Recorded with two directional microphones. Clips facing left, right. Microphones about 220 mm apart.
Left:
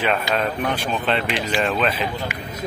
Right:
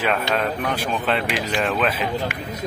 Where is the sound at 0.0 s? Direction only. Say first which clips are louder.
Even; centre (ahead or behind).